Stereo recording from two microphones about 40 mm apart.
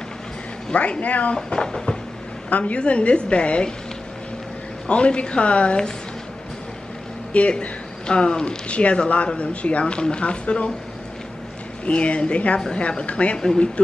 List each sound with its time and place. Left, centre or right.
0.7 s speech: left
1.3 s speech: left
2.5 s speech: left
4.8 s speech: left
7.3 s speech: left
11.8 s speech: left
12.5 s speech: centre
12.8 s speech: left